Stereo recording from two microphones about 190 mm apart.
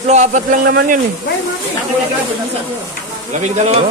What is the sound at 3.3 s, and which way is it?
Speech, 40° right (ahead or behind).